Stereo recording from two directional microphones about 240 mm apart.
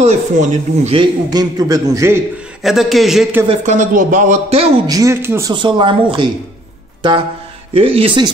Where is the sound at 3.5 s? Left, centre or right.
Right.